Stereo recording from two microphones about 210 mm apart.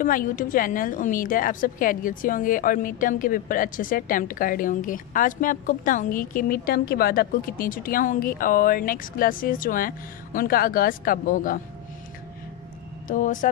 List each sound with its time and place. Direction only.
0.0 s a woman's voice: 40° left (ahead or behind)
13.1 s a woman's voice: 40° left (ahead or behind)